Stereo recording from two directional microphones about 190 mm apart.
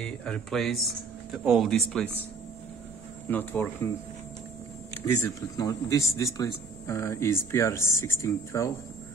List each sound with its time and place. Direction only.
0.0 s speech: 5° left (ahead or behind)
3.3 s speech: 10° left (ahead or behind)
5.0 s speech: 15° left (ahead or behind)